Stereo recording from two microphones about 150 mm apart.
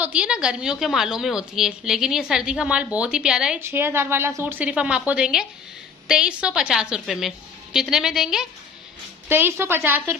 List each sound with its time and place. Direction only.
0.0 s a woman's voice: 10° right (ahead or behind)
3.6 s a woman's voice: 15° right (ahead or behind)
9.3 s a woman's voice: 15° right (ahead or behind)